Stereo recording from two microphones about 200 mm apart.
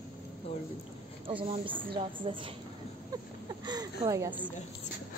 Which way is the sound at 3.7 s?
20° right (ahead or behind).